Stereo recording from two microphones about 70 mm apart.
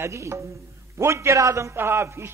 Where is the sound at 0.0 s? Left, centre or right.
Right.